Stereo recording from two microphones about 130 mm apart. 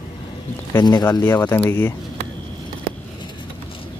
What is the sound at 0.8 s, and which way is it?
Speech, 30° left (ahead or behind).